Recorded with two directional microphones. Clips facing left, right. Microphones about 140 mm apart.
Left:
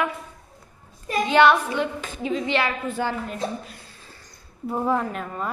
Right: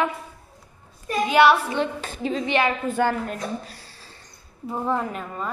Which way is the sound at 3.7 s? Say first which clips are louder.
Even; 35° right (ahead or behind).